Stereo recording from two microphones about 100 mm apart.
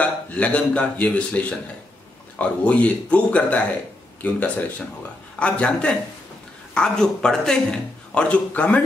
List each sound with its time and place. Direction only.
0.0 s a man's voice: 15° left (ahead or behind)